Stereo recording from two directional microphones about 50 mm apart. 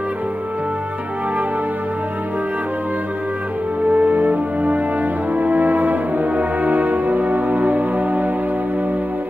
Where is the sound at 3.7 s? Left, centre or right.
Right.